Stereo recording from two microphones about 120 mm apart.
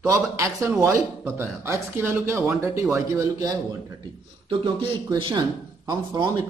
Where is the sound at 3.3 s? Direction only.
35° right (ahead or behind).